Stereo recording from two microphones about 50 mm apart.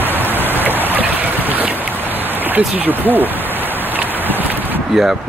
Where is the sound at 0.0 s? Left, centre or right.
Right.